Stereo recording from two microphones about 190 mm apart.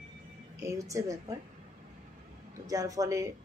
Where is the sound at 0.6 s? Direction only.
15° right (ahead or behind).